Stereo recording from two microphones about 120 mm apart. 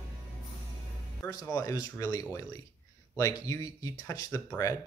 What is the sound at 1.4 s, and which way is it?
Speech, 25° left (ahead or behind).